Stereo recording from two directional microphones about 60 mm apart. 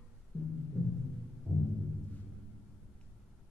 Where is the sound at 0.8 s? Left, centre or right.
Centre.